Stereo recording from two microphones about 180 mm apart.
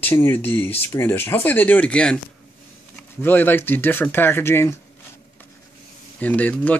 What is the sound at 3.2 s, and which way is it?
Speech, 10° left (ahead or behind).